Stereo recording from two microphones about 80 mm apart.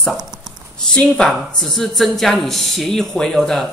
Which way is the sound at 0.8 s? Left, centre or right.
Centre.